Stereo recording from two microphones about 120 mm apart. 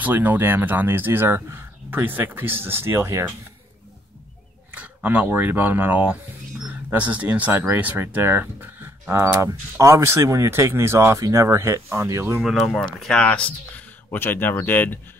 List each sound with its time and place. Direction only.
0.0 s speech: 15° right (ahead or behind)
4.7 s speech: 15° right (ahead or behind)
12.4 s speech: centre (ahead or behind); by 15.0 s 15° left (ahead or behind)